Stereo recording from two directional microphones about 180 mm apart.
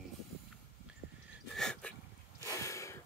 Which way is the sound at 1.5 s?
5° left (ahead or behind).